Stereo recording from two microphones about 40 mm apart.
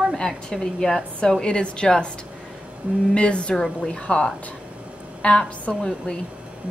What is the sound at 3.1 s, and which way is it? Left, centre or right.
A woman's voice, left.